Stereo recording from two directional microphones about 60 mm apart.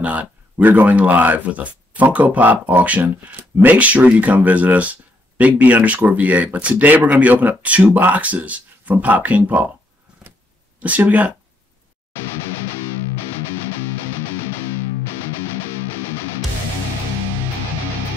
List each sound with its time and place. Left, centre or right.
0.0 s speech: right
10.8 s speech: right